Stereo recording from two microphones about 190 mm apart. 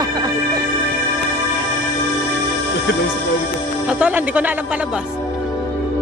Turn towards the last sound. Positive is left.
turn(degrees=-10)  # may be behind; listen again after turning